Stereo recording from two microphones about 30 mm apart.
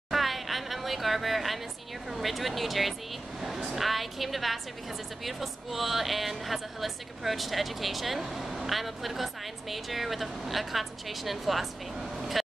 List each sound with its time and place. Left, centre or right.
0.1 s a sound: centre
2.0 s speech: centre
3.3 s vehicle: centre
3.7 s speech: centre
12.2 s vehicle: centre